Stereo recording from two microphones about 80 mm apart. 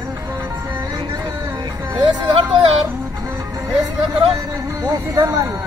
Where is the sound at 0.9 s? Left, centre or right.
Right.